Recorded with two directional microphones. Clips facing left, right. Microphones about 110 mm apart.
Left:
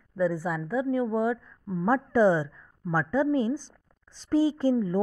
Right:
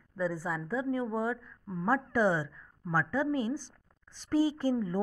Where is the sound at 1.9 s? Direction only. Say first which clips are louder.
Left 6 dB; 25° left (ahead or behind).